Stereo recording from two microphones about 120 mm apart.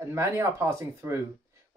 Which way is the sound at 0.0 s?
25° right (ahead or behind).